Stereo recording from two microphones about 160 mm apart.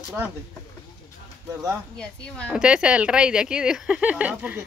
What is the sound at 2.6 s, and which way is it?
Speech, 5° right (ahead or behind).